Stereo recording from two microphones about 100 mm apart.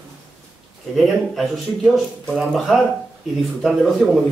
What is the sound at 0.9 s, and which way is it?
A man's voice, centre (ahead or behind).